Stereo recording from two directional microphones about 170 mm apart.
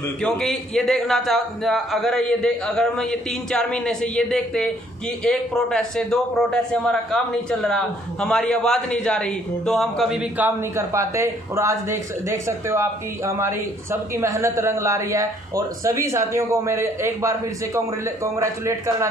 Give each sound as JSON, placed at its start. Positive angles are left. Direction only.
{"t": 0.0, "sound": "a man's voice", "side_deg": 5}